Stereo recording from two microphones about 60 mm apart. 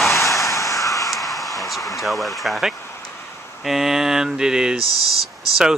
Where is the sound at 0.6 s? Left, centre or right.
Left.